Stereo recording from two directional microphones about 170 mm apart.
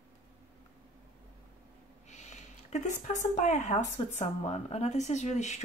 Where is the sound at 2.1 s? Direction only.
45° left (ahead or behind).